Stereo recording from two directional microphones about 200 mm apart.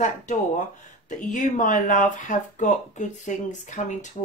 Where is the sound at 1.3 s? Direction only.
40° left (ahead or behind).